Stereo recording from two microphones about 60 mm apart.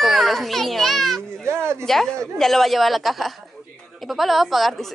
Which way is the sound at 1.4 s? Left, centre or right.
Right.